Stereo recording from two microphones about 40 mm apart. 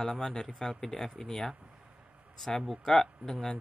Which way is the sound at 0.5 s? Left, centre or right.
Centre.